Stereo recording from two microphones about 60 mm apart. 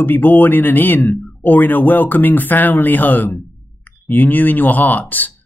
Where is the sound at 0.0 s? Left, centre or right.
Left.